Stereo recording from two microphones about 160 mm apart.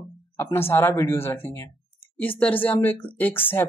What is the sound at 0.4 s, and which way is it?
Speech, 15° left (ahead or behind).